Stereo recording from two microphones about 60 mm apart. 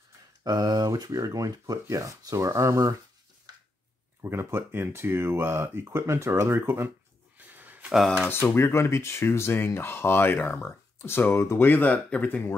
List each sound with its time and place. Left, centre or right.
0.4 s speech: right
4.2 s speech: right
5.9 s speech: right
7.3 s a sound: right
7.9 s speech: centre
8.3 s speech: left